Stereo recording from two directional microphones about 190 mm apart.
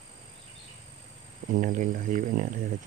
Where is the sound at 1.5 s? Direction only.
45° right (ahead or behind).